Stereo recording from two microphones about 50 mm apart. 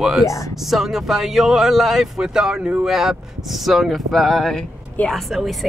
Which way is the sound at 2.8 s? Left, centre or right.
Centre.